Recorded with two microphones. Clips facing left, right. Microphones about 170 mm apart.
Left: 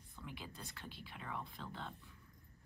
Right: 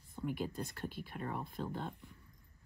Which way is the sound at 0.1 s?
45° right (ahead or behind).